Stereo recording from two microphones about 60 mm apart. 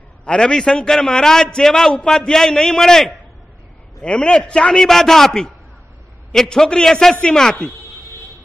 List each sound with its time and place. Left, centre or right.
0.2 s a man's voice: centre
4.8 s a man's voice: centre